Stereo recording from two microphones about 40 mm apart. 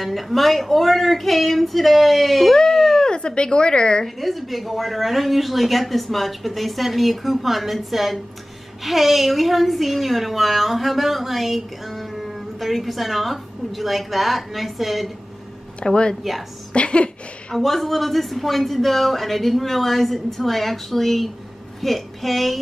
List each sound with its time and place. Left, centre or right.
0.0 s a woman's voice: centre
2.5 s a sound: centre
3.2 s a woman's voice: left
4.0 s a woman's voice: centre
15.8 s a woman's voice: centre
16.7 s speech: left
17.6 s a woman's voice: centre